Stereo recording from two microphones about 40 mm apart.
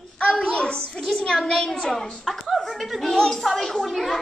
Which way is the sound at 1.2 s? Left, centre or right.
Centre.